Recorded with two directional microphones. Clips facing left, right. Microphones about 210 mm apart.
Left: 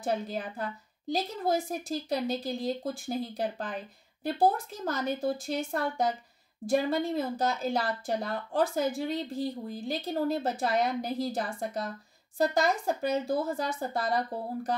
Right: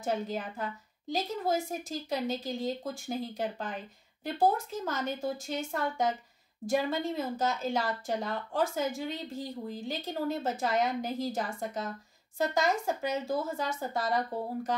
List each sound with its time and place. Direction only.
0.0 s speech: 35° left (ahead or behind)
4.8 s speech: 35° left (ahead or behind)